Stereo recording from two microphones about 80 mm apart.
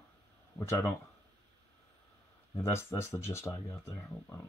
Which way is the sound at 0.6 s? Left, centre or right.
Left.